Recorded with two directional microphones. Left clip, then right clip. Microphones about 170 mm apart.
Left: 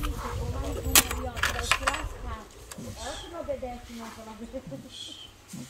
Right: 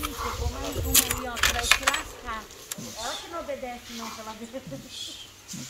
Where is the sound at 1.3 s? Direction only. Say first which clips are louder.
Right 4 dB; centre (ahead or behind).